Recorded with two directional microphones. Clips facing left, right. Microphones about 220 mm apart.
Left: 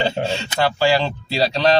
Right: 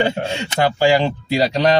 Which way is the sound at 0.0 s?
15° right (ahead or behind).